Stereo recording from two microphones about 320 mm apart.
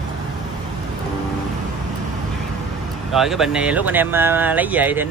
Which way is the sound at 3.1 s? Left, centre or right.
Centre.